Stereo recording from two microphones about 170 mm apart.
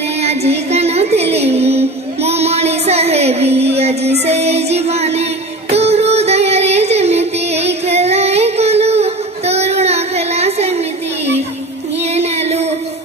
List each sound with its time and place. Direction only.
0.2 s music: 40° right (ahead or behind)
12.0 s music: 40° right (ahead or behind)